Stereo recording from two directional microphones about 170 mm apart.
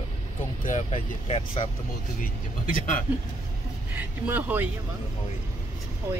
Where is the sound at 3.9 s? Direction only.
10° right (ahead or behind).